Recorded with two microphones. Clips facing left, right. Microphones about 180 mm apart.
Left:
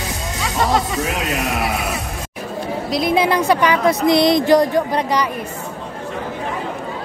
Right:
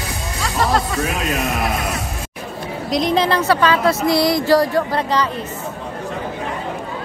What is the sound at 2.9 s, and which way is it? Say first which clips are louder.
Speech: even; 5° left (ahead or behind).